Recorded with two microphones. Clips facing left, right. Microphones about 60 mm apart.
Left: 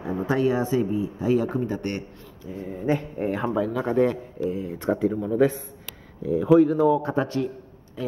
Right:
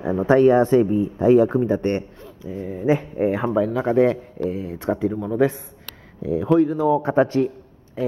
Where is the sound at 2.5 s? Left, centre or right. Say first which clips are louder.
Right 5 dB; centre.